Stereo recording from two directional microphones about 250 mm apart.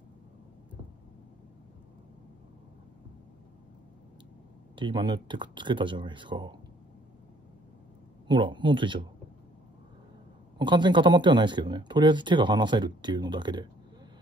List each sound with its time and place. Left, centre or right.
4.7 s speech: centre
8.3 s speech: centre
10.6 s speech: centre